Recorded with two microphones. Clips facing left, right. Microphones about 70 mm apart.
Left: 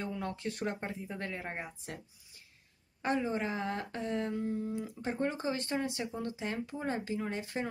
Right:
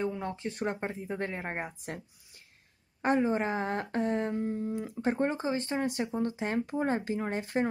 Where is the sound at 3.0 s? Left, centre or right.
Right.